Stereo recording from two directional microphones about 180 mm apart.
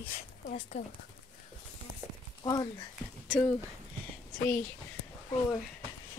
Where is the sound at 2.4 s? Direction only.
20° left (ahead or behind).